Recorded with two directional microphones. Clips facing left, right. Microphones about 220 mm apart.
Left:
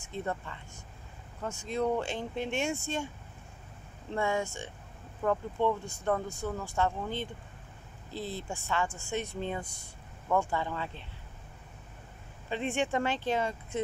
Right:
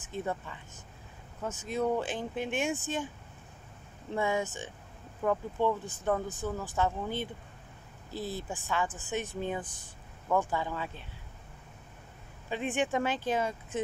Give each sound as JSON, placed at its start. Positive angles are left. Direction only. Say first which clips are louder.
{"t": 0.0, "sound": "speech", "louder": "right 1 dB", "side_deg": -5}
{"t": 4.1, "sound": "speech", "louder": "even", "side_deg": -5}
{"t": 8.4, "sound": "speech", "louder": "left 1 dB", "side_deg": 0}
{"t": 12.4, "sound": "speech", "louder": "even", "side_deg": 0}